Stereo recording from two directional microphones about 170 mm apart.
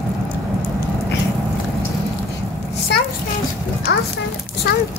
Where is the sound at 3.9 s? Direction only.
70° left (ahead or behind).